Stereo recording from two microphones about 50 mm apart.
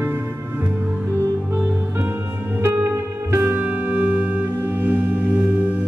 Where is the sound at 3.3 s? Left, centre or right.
Right.